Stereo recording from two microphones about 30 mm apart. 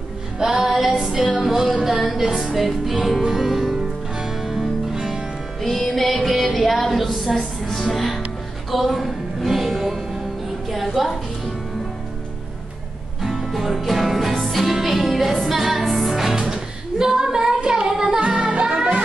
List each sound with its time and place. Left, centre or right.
0.4 s music: centre
5.6 s music: centre
10.7 s a sound: centre
13.2 s music: centre
16.3 s music: centre
17.6 s child singing: right
18.5 s music: right